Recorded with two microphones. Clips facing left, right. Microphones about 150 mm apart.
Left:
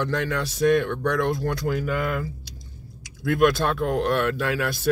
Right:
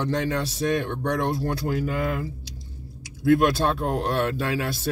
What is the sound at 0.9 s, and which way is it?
Speech, 35° right (ahead or behind).